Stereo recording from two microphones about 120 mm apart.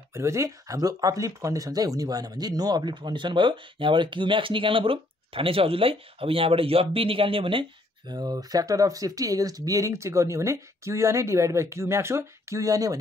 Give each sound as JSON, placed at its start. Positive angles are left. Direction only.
{"t": 0.1, "sound": "speech", "side_deg": -25}
{"t": 8.1, "sound": "speech", "side_deg": -35}